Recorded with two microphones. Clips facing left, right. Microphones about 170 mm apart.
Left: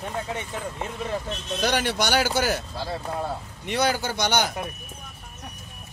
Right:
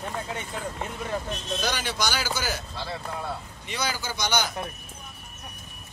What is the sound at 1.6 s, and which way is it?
Speech, 60° left (ahead or behind).